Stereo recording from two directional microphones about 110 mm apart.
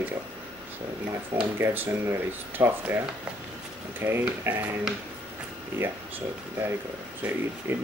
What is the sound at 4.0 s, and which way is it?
Speech, 20° right (ahead or behind).